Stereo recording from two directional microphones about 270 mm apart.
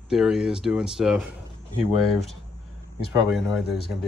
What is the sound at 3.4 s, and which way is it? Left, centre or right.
Chopping, centre.